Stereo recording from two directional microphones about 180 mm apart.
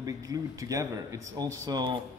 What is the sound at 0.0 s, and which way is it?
Speech, 20° right (ahead or behind).